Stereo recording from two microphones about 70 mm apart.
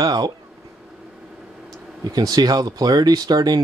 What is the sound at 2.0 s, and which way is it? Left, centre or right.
Speech, right.